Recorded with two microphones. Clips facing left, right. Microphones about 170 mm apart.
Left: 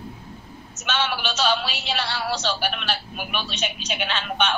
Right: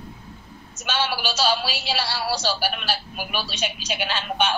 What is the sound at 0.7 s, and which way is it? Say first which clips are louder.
A man's voice: even; 10° right (ahead or behind).